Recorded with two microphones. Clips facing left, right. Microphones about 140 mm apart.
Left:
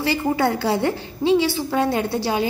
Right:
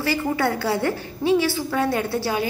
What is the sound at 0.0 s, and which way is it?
A woman's voice, 25° left (ahead or behind).